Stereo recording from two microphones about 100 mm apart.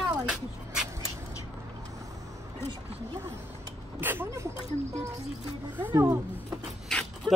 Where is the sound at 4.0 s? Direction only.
20° right (ahead or behind).